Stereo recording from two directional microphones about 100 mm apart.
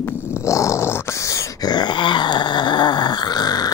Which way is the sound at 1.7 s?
50° left (ahead or behind).